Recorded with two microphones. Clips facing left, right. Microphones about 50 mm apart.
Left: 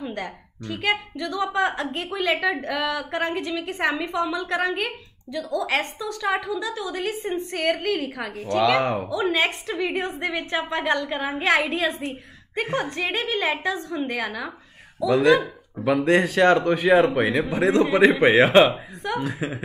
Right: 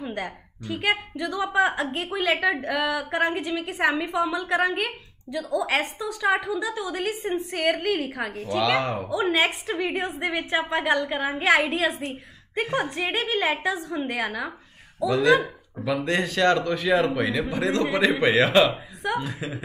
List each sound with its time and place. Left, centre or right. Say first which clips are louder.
0.0 s a woman's voice: even; centre
8.6 s a man's voice: left 3 dB; centre
9.1 s a woman's voice: right 4 dB; centre
16.0 s a man's voice: left 5 dB; left